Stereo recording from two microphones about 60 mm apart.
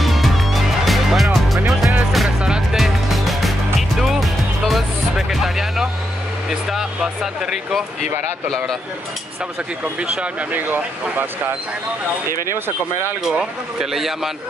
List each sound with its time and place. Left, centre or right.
0.0 s music: centre
5.3 s vehicle: centre
6.7 s speech: centre
9.9 s speech: centre
10.5 s speech: right
13.2 s speech: centre